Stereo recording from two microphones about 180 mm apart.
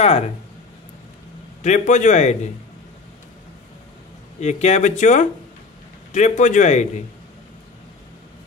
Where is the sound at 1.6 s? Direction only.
40° left (ahead or behind).